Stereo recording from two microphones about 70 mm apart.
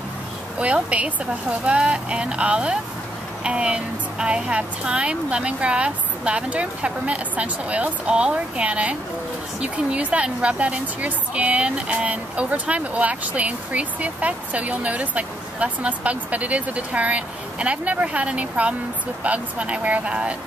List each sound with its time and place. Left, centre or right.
0.6 s a woman's voice: centre